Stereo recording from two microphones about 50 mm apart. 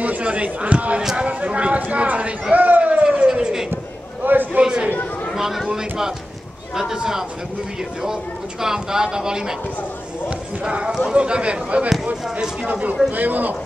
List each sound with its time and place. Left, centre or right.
0.0 s speech: right
2.5 s a sound: right; by 3.6 s centre
3.7 s a sound: right
4.6 s speech: centre
5.3 s speech: centre
10.6 s speech: right
13.1 s speech: right